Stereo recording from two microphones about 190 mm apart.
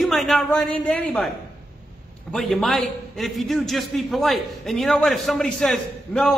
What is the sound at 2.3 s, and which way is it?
A man's voice, centre (ahead or behind).